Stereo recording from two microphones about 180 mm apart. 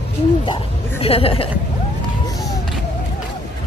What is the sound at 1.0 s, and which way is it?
Speech, 30° left (ahead or behind).